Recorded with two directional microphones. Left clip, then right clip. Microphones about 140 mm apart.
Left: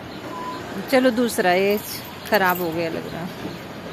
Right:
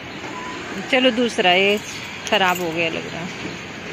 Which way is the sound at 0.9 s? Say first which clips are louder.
Right 1 dB; 10° left (ahead or behind).